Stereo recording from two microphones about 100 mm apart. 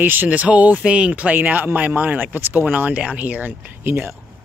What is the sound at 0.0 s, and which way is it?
Speech, 20° right (ahead or behind).